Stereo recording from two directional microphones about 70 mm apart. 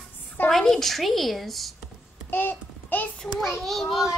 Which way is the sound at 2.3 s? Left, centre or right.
Left.